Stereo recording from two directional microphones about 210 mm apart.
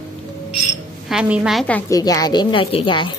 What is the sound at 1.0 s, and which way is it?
A woman's voice, 5° right (ahead or behind).